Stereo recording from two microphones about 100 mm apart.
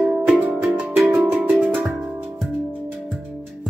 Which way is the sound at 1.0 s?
25° right (ahead or behind).